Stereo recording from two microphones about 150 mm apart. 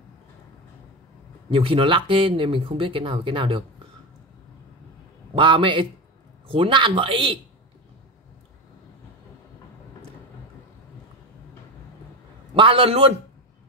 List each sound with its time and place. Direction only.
1.5 s speech: 35° right (ahead or behind)
5.3 s speech: 35° right (ahead or behind)
12.5 s speech: 35° right (ahead or behind)